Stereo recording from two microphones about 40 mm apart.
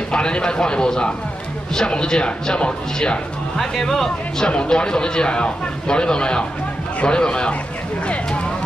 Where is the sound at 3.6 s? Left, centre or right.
Centre; by 7.5 s left.